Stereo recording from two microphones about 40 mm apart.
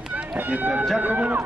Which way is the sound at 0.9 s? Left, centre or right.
Right.